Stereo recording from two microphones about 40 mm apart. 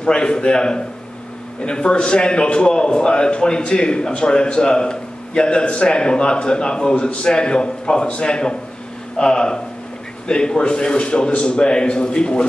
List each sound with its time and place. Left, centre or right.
0.0 s a man's voice: left